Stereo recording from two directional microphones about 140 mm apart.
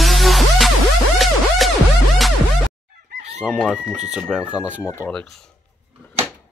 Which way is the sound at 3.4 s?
5° right (ahead or behind).